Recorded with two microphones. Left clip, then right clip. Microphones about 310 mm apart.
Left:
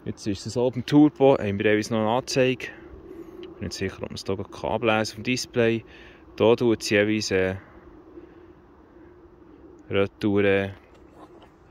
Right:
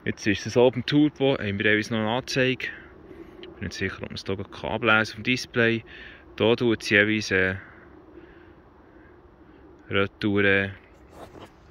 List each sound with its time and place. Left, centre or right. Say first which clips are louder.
0.2 s speech: right 5 dB; centre
0.6 s speech: right 5 dB; centre
0.8 s speech: left 4 dB; centre
9.8 s speech: left 1 dB; centre